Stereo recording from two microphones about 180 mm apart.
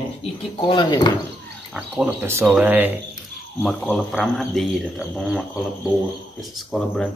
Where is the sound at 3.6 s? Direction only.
Centre (ahead or behind).